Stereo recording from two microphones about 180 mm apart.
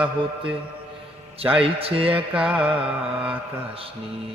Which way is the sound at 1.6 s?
30° right (ahead or behind).